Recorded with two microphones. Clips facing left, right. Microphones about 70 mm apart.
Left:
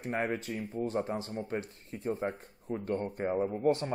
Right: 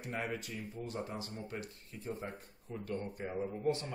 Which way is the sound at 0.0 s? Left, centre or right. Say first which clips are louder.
Left 7 dB; left.